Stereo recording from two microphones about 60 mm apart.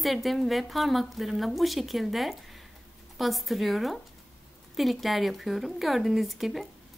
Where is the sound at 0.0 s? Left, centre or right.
Centre.